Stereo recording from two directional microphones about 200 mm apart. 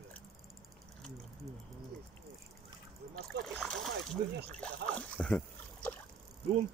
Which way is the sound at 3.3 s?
55° right (ahead or behind).